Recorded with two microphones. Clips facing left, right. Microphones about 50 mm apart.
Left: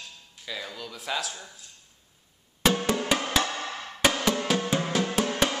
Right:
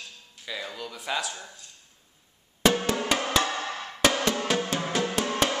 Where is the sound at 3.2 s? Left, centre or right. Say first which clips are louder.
Right 1 dB; centre.